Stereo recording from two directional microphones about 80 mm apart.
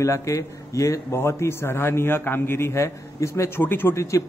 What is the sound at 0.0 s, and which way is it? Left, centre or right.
A man's voice, left.